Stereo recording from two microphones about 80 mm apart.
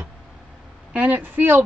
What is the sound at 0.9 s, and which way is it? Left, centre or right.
Speech, centre.